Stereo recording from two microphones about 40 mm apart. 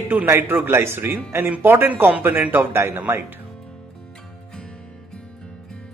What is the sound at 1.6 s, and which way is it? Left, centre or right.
Speech, right.